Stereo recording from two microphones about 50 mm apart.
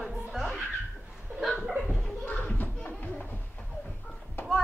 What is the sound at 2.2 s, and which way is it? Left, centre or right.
Children playing, left.